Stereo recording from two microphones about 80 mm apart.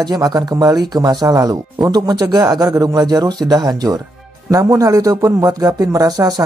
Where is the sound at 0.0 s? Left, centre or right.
Right.